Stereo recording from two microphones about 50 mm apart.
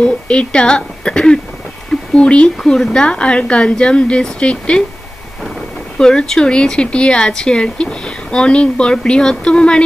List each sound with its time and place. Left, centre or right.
0.0 s a woman's voice: left
2.6 s a woman's voice: centre
5.9 s a woman's voice: centre